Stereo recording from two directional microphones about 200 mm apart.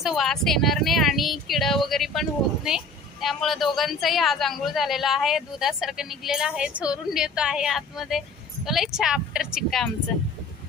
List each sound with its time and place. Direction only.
0.0 s speech: centre (ahead or behind)